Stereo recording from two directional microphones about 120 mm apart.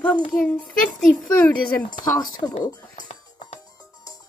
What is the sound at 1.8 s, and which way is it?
Speech, 35° left (ahead or behind).